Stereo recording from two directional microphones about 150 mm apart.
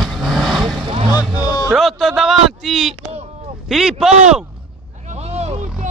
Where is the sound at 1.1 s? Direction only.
25° left (ahead or behind).